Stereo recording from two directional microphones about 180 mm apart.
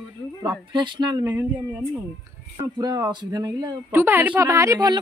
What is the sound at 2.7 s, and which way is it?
Speech, 20° right (ahead or behind).